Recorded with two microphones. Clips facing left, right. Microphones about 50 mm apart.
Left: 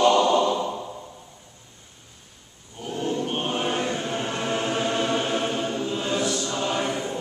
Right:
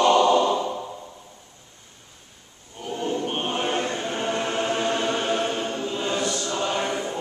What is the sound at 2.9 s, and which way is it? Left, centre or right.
Choir, centre.